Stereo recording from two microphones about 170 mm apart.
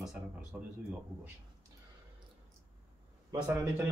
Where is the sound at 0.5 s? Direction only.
5° right (ahead or behind).